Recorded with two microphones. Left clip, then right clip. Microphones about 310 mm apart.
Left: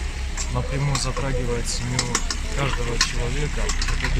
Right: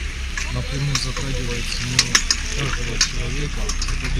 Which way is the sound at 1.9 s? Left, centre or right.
Left.